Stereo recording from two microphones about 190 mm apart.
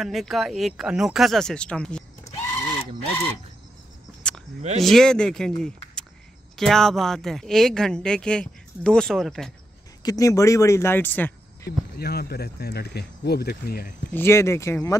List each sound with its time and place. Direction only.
0.0 s speech: centre (ahead or behind)
4.2 s a sound: 5° left (ahead or behind)
4.6 s speech: 35° right (ahead or behind)
4.8 s speech: 5° left (ahead or behind)
10.0 s speech: 15° left (ahead or behind)
12.0 s speech: 55° left (ahead or behind)
14.1 s speech: 15° left (ahead or behind)